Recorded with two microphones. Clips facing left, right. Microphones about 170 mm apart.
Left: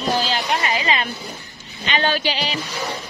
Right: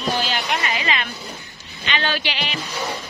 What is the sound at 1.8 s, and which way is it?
Speech, 40° left (ahead or behind).